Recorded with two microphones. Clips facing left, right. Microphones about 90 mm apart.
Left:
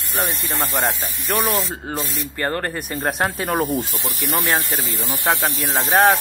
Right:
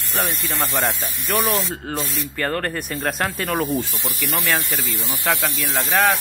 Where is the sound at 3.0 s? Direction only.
20° left (ahead or behind).